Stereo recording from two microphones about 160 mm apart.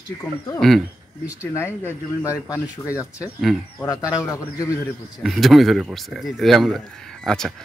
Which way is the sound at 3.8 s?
20° left (ahead or behind).